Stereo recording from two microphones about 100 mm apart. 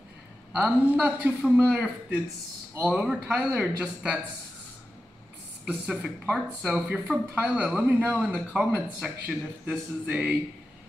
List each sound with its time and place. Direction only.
0.6 s speech: 10° right (ahead or behind)
5.7 s speech: 5° right (ahead or behind)
8.2 s speech: 5° right (ahead or behind)